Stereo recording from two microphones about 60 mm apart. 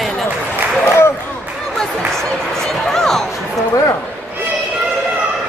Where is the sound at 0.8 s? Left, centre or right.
Left.